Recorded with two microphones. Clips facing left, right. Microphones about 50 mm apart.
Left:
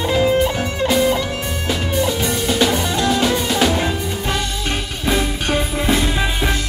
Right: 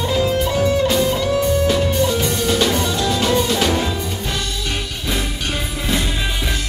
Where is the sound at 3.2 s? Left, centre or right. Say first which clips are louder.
Even; centre.